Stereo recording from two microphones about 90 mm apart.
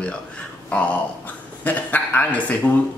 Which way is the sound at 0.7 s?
15° left (ahead or behind).